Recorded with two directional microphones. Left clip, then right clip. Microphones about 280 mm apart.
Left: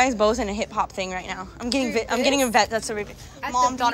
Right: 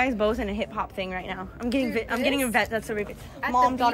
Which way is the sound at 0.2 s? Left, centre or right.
Centre.